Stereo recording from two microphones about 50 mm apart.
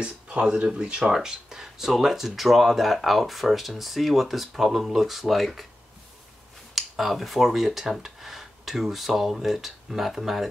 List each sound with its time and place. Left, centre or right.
0.0 s speech: right; by 5.7 s centre
6.7 s speech: centre